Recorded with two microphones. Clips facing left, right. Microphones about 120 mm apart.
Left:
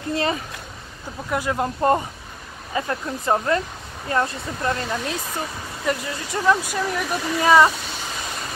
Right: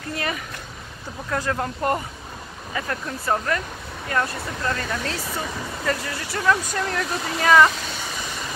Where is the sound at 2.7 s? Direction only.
25° left (ahead or behind).